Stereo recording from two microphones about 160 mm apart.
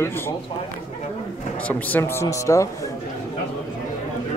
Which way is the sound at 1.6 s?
10° left (ahead or behind).